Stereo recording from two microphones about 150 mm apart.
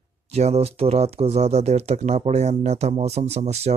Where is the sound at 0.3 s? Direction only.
45° right (ahead or behind).